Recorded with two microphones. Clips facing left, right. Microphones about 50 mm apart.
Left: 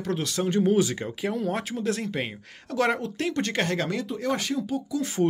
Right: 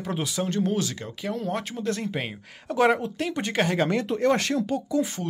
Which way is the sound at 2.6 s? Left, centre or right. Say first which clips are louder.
Right 3 dB; right.